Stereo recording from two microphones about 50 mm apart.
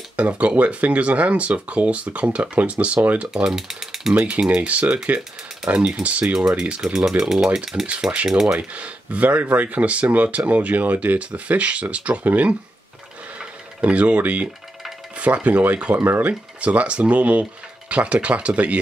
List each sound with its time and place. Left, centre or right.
0.1 s speech: right
3.4 s speech: centre
4.2 s speech: centre
6.2 s speech: centre
8.0 s speech: right
8.3 s speech: centre
8.5 s speech: right
13.4 s sewing machine: right
15.1 s speech: right
16.0 s speech: right
16.3 s speech: right